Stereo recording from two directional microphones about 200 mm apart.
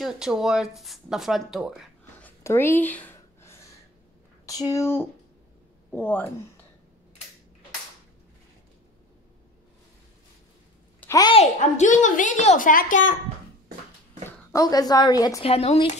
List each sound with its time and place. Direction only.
0.0 s speech: centre (ahead or behind)
2.2 s a sound: 10° left (ahead or behind)
4.5 s speech: 15° left (ahead or behind)
11.0 s a sound: 15° left (ahead or behind)
11.3 s a woman's voice: 35° left (ahead or behind)
14.5 s a woman's voice: 20° left (ahead or behind)
15.4 s a woman's voice: 30° left (ahead or behind)